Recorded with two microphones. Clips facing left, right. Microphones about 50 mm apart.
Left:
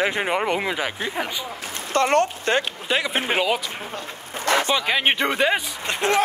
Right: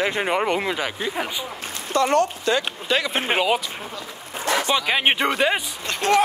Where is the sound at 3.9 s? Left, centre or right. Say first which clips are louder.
Left 1 dB; left.